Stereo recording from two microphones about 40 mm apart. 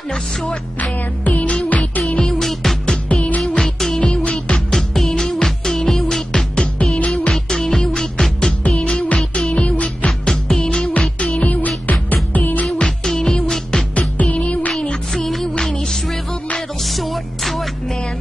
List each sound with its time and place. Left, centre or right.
0.7 s music: left
2.0 s music: left
2.4 s music: centre
3.1 s music: left
3.5 s music: centre
4.0 s music: left
4.6 s music: centre
8.6 s music: left
10.0 s music: centre
11.5 s music: left
12.7 s music: centre
13.9 s music: left
15.1 s music: centre
16.8 s music: centre